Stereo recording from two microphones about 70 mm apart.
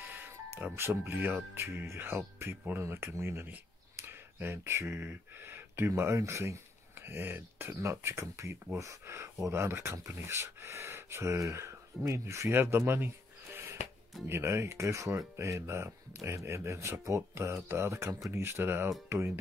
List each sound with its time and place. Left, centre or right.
0.0 s music: right
0.7 s speech: right
7.0 s speech: right
12.5 s a sound: right
14.2 s speech: right